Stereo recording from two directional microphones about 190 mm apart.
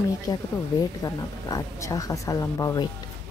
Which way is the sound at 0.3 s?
20° left (ahead or behind).